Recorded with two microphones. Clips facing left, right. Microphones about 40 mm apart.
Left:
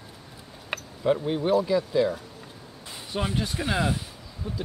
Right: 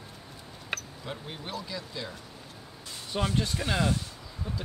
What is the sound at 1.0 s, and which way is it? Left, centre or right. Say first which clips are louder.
Speech: left 15 dB; left.